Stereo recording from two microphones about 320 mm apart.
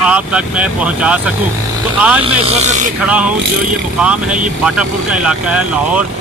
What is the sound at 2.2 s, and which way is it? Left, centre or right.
Speech, right.